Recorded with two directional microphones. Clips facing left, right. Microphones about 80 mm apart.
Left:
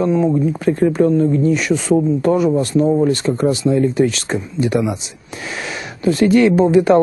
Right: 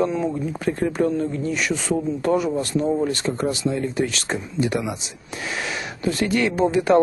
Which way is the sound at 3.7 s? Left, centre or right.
Left.